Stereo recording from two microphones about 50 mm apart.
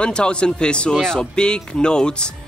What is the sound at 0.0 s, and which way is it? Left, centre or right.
Speech, centre.